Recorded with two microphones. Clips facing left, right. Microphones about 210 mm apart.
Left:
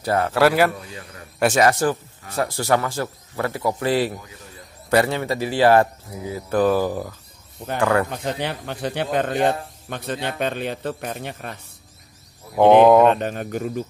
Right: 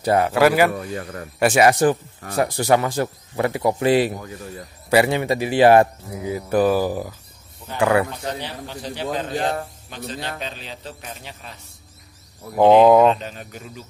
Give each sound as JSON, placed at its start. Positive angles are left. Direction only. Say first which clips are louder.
{"t": 0.0, "sound": "speech", "louder": "right 3 dB", "side_deg": -15}
{"t": 0.3, "sound": "speech", "louder": "left 1 dB", "side_deg": 0}
{"t": 0.7, "sound": "a man's voice", "louder": "right 9 dB", "side_deg": -55}
{"t": 1.4, "sound": "speech", "louder": "right 2 dB", "side_deg": -10}
{"t": 8.4, "sound": "a man's voice", "louder": "left 5 dB", "side_deg": 60}
{"t": 12.5, "sound": "speech", "louder": "even", "side_deg": 0}
{"t": 13.1, "sound": "speech", "louder": "left 4 dB", "side_deg": 55}